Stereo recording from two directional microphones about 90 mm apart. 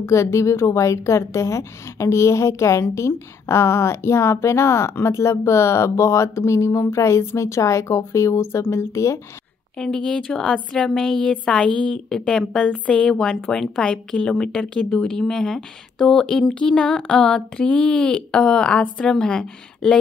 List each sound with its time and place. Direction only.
0.0 s a woman's voice: 30° left (ahead or behind)
9.8 s a woman's voice: 10° left (ahead or behind)